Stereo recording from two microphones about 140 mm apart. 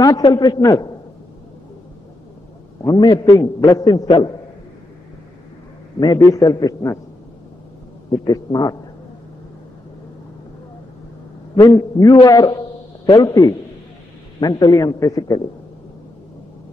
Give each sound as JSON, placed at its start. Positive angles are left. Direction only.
{"t": 0.0, "sound": "a man's voice", "side_deg": 30}
{"t": 2.8, "sound": "a man's voice", "side_deg": 30}
{"t": 5.9, "sound": "a man's voice", "side_deg": 25}
{"t": 8.1, "sound": "a man's voice", "side_deg": 30}
{"t": 11.7, "sound": "a man's voice", "side_deg": 25}